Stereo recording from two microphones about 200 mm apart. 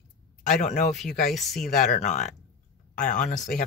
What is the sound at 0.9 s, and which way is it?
Speech, centre (ahead or behind).